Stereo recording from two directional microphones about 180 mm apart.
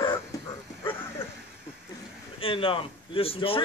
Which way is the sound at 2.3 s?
30° left (ahead or behind).